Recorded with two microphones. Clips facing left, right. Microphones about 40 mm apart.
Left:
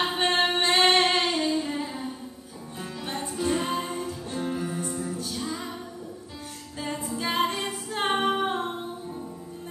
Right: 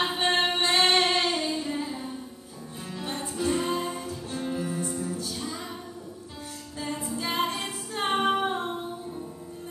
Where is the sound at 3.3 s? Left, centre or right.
Centre.